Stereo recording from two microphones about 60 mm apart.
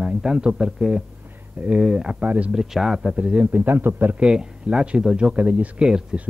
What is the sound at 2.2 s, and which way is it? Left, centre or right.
Speech, right.